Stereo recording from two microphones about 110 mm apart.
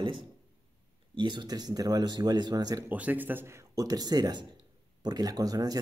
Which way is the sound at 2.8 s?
15° right (ahead or behind).